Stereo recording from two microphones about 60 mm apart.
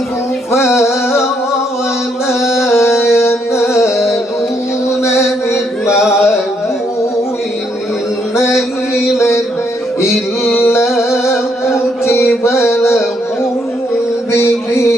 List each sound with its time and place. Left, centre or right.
2.4 s music: centre
2.8 s music: left
9.1 s music: left
10.6 s music: left
14.3 s a sound: left